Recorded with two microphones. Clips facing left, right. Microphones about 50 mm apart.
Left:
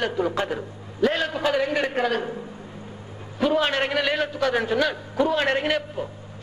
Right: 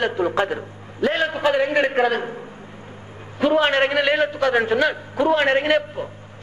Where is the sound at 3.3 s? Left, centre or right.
Right.